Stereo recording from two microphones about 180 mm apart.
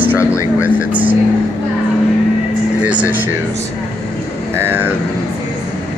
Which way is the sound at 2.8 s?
5° right (ahead or behind).